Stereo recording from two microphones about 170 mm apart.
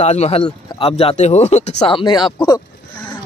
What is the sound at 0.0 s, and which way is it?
Speech, 40° left (ahead or behind).